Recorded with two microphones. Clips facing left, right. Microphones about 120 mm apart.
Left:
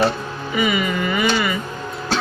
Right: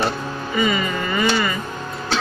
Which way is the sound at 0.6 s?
15° left (ahead or behind).